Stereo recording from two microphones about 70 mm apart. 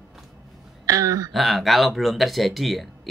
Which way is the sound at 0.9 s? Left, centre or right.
Right.